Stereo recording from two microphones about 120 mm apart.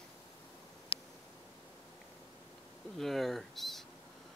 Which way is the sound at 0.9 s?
50° left (ahead or behind).